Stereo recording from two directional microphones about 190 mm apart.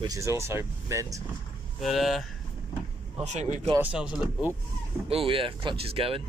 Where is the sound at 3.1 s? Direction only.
35° right (ahead or behind).